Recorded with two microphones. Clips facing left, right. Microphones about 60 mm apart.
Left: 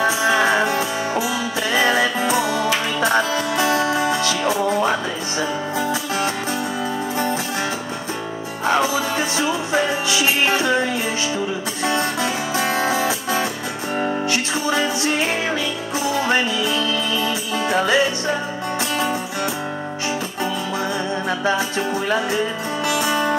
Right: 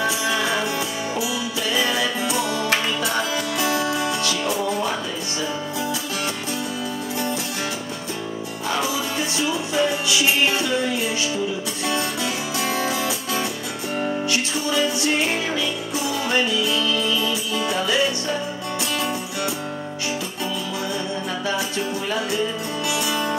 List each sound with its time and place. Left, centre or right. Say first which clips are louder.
0.0 s music: left 5 dB; left
8.6 s music: left 6 dB; left
16.1 s music: left 3 dB; left
21.3 s music: left 6 dB; left